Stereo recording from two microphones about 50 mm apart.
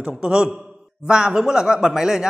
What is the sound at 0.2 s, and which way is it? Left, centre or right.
A man's voice, centre.